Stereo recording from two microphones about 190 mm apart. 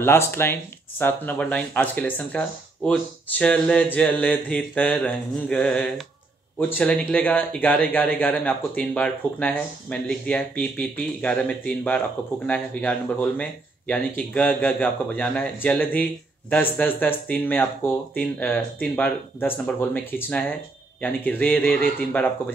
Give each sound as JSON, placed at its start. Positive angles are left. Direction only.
{"t": 0.0, "sound": "speech", "side_deg": 15}